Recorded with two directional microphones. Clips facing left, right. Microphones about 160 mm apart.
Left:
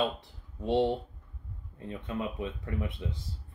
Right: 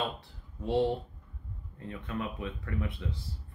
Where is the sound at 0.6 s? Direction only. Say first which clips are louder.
Left 1 dB; 20° left (ahead or behind).